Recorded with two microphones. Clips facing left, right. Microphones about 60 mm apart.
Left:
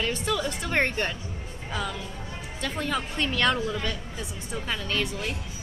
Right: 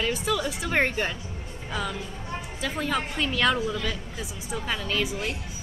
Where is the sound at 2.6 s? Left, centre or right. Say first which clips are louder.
Right 1 dB; centre.